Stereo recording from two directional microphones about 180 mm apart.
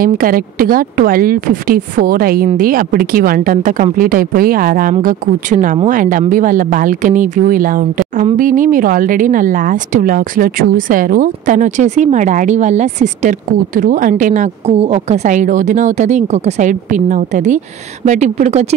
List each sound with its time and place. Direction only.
0.0 s speech: 50° right (ahead or behind); by 18.8 s 35° right (ahead or behind)